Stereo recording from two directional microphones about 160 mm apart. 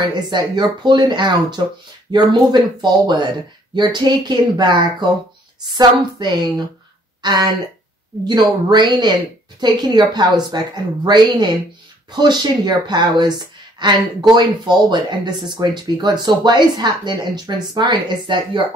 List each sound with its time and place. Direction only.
0.0 s speech: 30° right (ahead or behind)